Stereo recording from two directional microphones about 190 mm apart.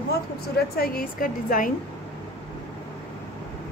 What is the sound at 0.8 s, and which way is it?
Speech, 50° left (ahead or behind).